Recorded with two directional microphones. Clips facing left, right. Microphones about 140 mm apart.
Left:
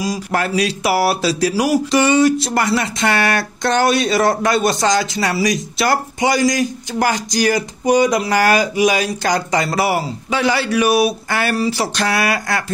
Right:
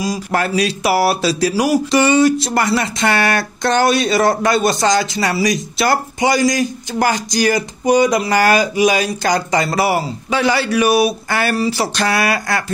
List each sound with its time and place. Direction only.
0.0 s speech: 25° right (ahead or behind)